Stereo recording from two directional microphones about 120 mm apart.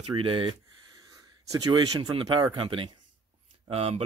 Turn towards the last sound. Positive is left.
turn(degrees=-55)  # may be behind; listen again after turning